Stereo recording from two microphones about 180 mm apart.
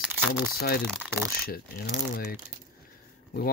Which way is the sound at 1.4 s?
55° left (ahead or behind).